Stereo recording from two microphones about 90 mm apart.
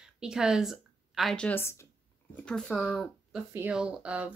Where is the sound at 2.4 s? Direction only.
5° left (ahead or behind).